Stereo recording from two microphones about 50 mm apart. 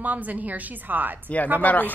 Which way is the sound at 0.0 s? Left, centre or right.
Right.